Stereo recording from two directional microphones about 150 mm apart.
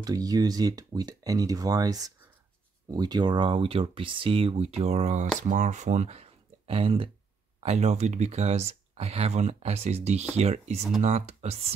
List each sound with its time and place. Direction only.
0.0 s speech: 25° right (ahead or behind); by 11.7 s 45° right (ahead or behind)